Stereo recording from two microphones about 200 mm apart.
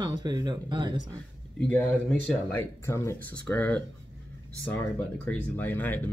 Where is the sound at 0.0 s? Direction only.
20° right (ahead or behind).